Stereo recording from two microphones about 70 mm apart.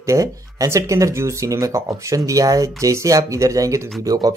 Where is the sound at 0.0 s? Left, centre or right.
Right.